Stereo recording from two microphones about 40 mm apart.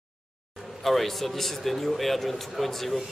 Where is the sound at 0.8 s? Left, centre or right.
Centre.